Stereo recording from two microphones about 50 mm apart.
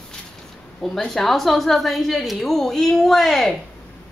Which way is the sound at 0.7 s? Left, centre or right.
Centre.